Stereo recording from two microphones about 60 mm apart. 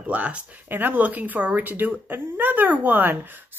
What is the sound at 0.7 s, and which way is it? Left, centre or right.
Speech, right.